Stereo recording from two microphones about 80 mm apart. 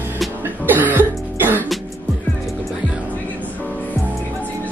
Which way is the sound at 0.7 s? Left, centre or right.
Right.